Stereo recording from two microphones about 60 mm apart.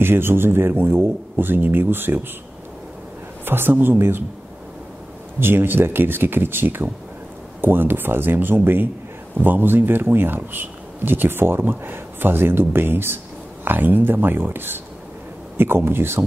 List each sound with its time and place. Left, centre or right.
0.0 s speech: right
3.4 s speech: right
5.4 s speech: right